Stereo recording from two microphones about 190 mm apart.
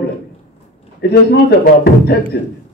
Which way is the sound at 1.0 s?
60° left (ahead or behind).